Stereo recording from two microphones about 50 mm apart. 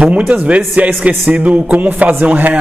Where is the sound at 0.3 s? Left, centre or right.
Right.